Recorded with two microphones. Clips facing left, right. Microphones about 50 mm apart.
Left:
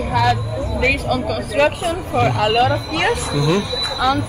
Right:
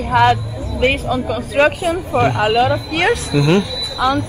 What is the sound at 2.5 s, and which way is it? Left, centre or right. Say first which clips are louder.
Speech: right 1 dB; centre.